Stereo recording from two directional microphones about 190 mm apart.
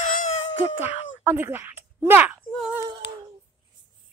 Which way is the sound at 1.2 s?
10° right (ahead or behind).